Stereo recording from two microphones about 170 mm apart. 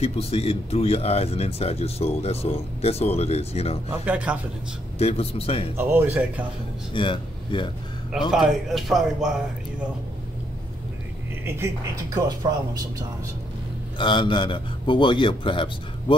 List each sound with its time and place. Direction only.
0.0 s speech: 35° left (ahead or behind)
4.0 s speech: 10° right (ahead or behind)
4.9 s speech: 35° left (ahead or behind)
5.8 s speech: 15° right (ahead or behind)
6.9 s a man's voice: 30° left (ahead or behind)
8.3 s speech: centre (ahead or behind)
11.4 s speech: 15° right (ahead or behind)
13.9 s a man's voice: 30° left (ahead or behind)